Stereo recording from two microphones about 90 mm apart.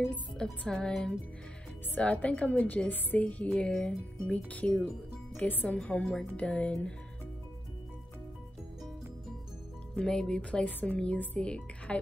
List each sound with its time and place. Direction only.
0.3 s speech: 5° left (ahead or behind)
9.9 s speech: 10° left (ahead or behind)